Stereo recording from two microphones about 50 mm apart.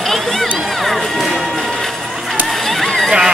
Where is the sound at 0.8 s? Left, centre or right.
Centre.